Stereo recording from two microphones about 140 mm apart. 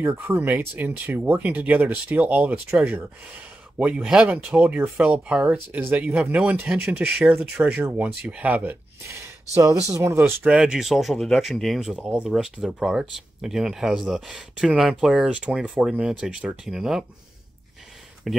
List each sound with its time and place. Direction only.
0.0 s speech: 15° right (ahead or behind)
10.5 s speech: 5° right (ahead or behind)
18.3 s speech: centre (ahead or behind)